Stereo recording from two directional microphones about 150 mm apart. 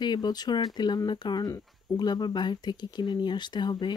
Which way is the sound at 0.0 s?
30° left (ahead or behind).